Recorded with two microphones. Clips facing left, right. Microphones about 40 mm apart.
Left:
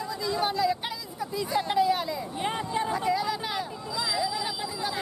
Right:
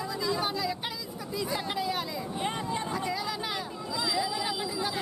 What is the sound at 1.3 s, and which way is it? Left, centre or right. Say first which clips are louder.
Speech: left 6 dB; centre.